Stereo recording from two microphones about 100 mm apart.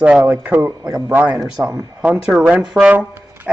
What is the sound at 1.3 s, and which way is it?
Speech, 5° right (ahead or behind).